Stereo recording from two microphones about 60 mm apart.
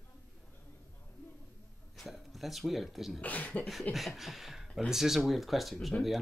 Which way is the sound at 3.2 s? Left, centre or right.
Left.